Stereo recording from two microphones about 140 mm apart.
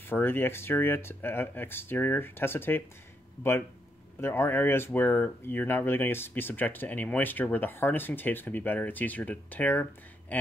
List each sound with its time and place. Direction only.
0.0 s speech: 15° left (ahead or behind)
4.2 s speech: 15° left (ahead or behind)